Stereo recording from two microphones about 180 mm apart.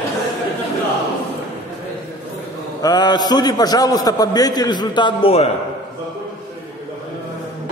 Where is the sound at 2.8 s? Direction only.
20° left (ahead or behind).